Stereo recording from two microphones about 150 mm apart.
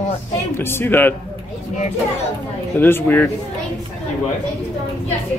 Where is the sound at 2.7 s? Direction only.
15° left (ahead or behind).